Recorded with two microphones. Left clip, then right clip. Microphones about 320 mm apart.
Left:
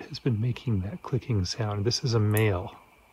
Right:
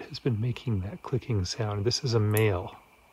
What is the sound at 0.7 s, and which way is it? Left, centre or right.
Speech, right.